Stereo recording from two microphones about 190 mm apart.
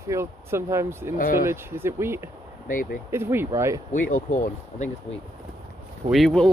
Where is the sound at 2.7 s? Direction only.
45° left (ahead or behind).